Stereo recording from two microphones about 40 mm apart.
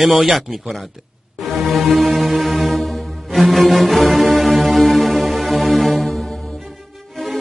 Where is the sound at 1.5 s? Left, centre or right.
Centre.